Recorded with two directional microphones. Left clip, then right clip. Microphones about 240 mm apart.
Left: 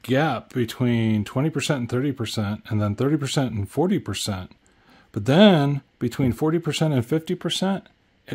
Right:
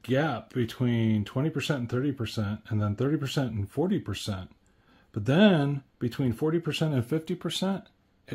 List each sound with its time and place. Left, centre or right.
0.0 s speech: left